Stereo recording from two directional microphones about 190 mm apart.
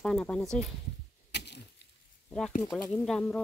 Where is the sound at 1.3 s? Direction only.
60° left (ahead or behind).